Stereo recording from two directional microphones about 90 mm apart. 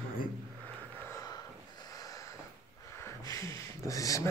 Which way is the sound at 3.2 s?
40° left (ahead or behind).